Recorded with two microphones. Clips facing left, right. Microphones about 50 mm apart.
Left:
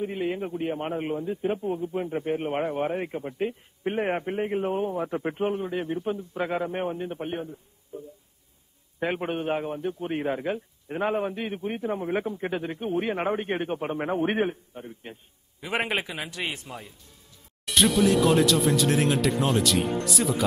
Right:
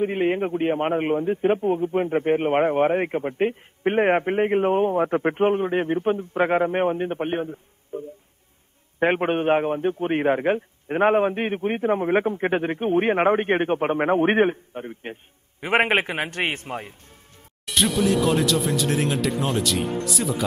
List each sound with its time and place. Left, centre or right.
0.0 s a man's voice: right
17.6 s speech: centre